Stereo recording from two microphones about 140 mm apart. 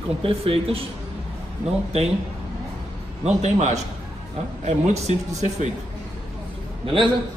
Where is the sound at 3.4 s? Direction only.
55° right (ahead or behind).